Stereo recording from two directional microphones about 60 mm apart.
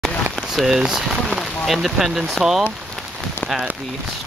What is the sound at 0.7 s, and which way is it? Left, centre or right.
Speech, centre.